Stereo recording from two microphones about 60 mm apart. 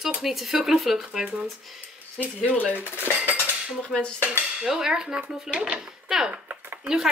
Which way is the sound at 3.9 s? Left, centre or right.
Centre.